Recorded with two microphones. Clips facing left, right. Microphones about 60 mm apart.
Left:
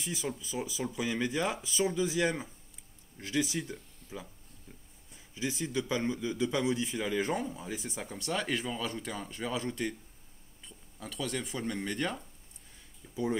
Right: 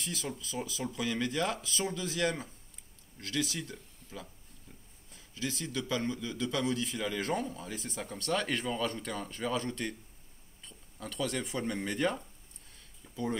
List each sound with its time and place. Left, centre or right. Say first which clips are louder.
0.0 s a man's voice: left 2 dB; centre
13.1 s speech: left 3 dB; centre